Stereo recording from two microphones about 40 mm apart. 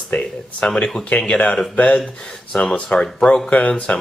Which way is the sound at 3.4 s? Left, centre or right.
Left.